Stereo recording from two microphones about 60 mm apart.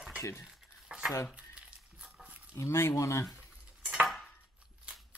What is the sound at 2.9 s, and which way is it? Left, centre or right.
Speech, left.